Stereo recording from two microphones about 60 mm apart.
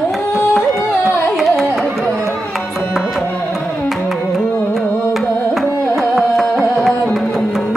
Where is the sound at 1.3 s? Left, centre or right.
Centre.